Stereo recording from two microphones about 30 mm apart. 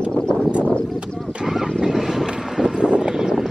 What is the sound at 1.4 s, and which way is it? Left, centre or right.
Vehicle, centre.